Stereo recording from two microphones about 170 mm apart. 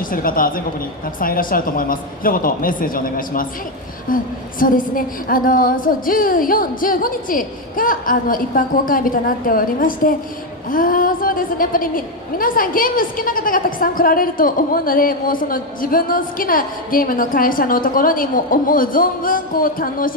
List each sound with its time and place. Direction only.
0.1 s a woman's voice: 55° left (ahead or behind)